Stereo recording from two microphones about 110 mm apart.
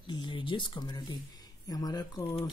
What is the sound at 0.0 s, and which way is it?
Speech, 45° left (ahead or behind).